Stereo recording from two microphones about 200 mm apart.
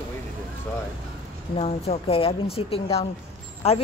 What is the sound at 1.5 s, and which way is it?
A woman's voice, 30° left (ahead or behind).